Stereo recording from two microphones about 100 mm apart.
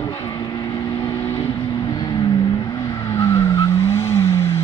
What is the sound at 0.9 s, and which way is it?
Vehicle, 45° left (ahead or behind).